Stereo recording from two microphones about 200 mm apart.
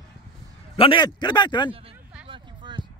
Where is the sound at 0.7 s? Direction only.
25° left (ahead or behind).